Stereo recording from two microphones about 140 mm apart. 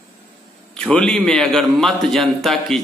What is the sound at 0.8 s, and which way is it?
A man's voice, 5° left (ahead or behind).